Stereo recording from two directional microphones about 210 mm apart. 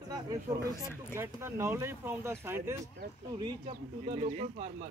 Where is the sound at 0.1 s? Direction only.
15° right (ahead or behind).